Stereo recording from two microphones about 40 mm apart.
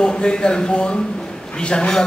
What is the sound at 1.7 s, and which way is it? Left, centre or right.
Speech, left.